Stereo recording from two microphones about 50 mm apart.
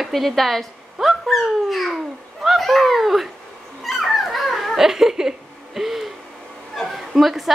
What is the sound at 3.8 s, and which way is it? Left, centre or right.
Dog, centre.